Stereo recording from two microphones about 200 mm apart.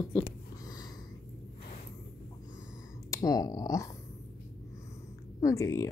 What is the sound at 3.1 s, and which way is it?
Clicking, 15° left (ahead or behind).